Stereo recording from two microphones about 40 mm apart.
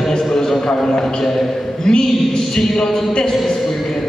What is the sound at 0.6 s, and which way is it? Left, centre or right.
A man's voice, centre.